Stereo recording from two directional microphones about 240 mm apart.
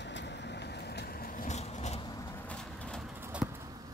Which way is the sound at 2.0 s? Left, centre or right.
Centre.